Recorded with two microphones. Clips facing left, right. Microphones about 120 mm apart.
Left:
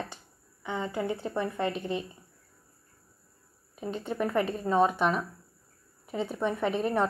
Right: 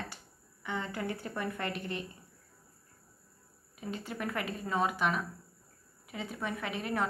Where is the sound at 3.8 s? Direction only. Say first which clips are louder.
Left 6 dB; 30° left (ahead or behind).